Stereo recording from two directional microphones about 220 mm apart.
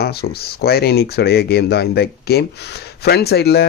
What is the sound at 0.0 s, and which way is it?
Speech, 45° left (ahead or behind).